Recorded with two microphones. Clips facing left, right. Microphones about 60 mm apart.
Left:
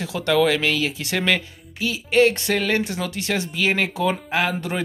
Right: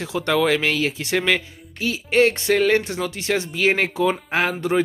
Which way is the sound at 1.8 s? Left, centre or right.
Right.